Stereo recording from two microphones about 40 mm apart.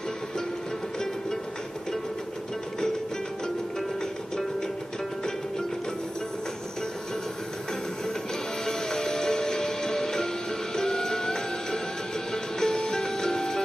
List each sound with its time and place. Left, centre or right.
8.6 s music: centre